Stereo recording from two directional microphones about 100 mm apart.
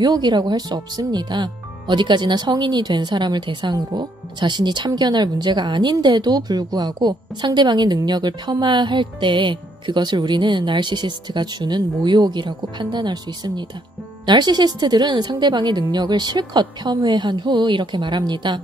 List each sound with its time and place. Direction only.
0.0 s speech: 45° right (ahead or behind)